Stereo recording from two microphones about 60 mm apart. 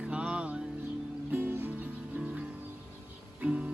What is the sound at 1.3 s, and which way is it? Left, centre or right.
Music, right.